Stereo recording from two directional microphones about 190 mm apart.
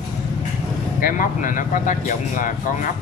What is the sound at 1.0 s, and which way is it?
Speech, 45° left (ahead or behind).